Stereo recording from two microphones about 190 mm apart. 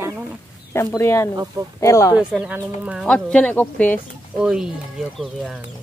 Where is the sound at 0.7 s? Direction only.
15° left (ahead or behind).